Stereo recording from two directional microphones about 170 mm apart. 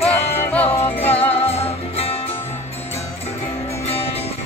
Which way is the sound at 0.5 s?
10° left (ahead or behind).